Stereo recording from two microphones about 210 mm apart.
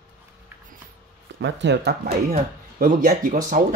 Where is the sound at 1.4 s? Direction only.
55° right (ahead or behind).